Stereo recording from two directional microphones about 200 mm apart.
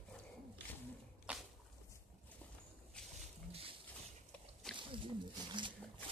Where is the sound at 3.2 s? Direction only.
30° right (ahead or behind).